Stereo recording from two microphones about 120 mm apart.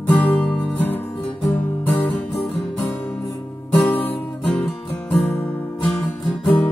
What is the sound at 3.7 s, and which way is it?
Music, 15° left (ahead or behind).